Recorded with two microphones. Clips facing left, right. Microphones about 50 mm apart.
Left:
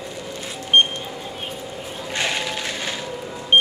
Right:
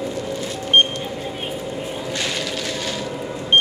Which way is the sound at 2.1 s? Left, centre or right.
Left.